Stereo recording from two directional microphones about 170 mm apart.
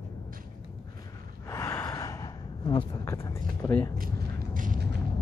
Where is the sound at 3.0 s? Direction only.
15° left (ahead or behind).